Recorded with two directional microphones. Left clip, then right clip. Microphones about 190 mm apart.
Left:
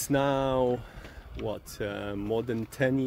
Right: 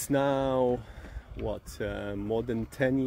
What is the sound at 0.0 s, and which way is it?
Speech, 15° right (ahead or behind).